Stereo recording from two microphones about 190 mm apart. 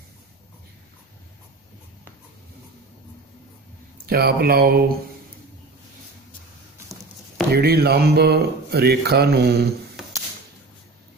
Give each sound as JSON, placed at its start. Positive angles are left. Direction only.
{"t": 4.0, "sound": "speech", "side_deg": -55}
{"t": 7.5, "sound": "speech", "side_deg": -55}